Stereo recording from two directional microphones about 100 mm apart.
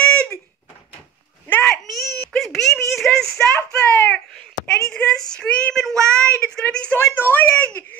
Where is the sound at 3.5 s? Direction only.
10° left (ahead or behind).